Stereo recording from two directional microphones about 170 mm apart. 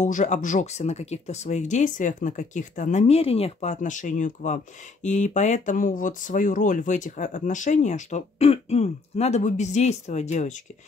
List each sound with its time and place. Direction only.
0.0 s speech: 45° left (ahead or behind)